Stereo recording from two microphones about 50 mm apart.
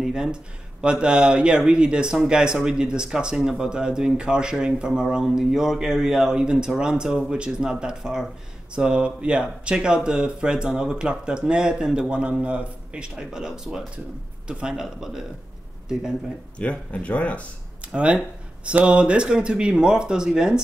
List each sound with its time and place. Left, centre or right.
0.0 s speech: centre
13.1 s speech: centre
16.5 s speech: left
17.9 s speech: right